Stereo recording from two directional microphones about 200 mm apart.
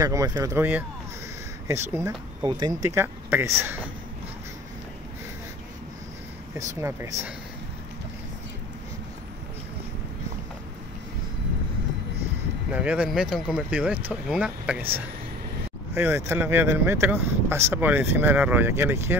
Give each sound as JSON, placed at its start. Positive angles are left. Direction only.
{"t": 0.0, "sound": "speech", "side_deg": -15}
{"t": 6.7, "sound": "speech", "side_deg": -15}
{"t": 12.7, "sound": "speech", "side_deg": -5}
{"t": 15.9, "sound": "speech", "side_deg": -10}